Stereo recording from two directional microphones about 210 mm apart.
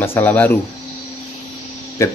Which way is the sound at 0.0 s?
10° left (ahead or behind).